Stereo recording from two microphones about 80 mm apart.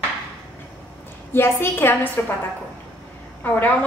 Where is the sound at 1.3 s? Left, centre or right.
Left.